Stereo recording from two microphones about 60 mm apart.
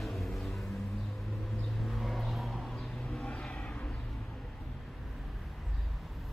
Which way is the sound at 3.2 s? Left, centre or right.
Centre.